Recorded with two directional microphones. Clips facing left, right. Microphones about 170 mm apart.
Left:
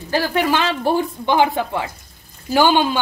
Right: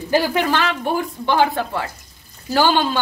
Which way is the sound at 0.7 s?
30° left (ahead or behind).